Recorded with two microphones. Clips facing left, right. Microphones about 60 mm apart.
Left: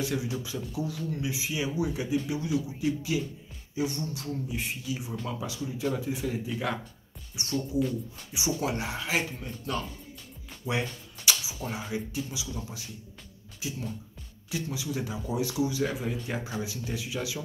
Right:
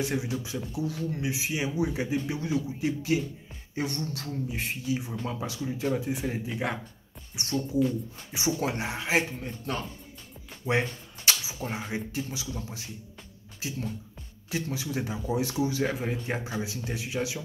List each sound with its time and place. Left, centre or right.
0.0 s speech: right
3.7 s speech: right
4.2 s speech: right
16.4 s speech: right